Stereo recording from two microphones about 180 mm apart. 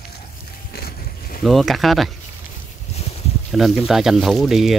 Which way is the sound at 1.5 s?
Centre (ahead or behind).